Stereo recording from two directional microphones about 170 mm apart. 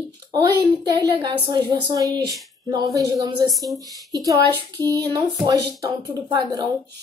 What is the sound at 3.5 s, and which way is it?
Speech, centre (ahead or behind).